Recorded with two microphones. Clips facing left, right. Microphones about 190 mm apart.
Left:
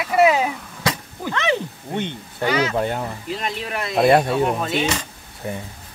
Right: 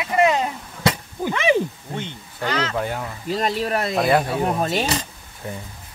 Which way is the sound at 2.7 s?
25° left (ahead or behind).